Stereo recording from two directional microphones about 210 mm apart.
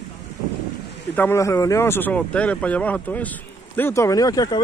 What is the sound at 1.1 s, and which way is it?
Speech, 10° left (ahead or behind).